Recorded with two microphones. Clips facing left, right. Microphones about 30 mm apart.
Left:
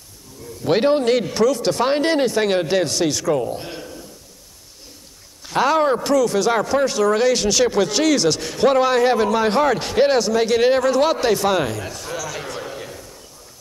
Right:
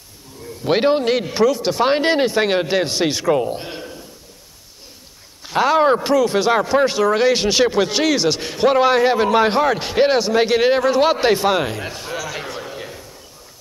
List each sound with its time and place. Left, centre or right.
0.7 s speech: centre
3.6 s a sound: centre
5.5 s speech: centre
6.0 s a man's voice: right
9.6 s a man's voice: centre
12.5 s a sound: centre